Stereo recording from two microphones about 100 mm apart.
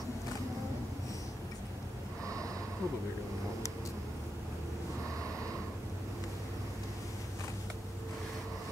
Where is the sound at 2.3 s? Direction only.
35° right (ahead or behind).